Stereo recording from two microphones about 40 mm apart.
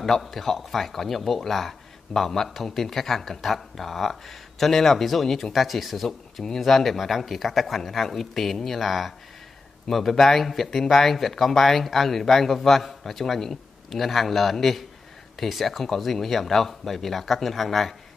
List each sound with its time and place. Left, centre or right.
0.0 s speech: centre
6.0 s speech: centre